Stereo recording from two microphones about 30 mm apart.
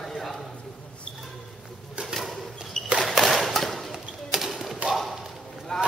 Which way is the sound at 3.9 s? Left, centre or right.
Centre.